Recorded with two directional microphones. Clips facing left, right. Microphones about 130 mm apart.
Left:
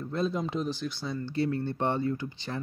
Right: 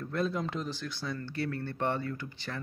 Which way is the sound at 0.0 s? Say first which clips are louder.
Left 2 dB; 20° left (ahead or behind).